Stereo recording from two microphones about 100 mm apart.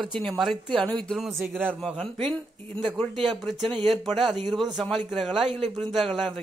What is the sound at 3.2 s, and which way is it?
Speech, centre (ahead or behind).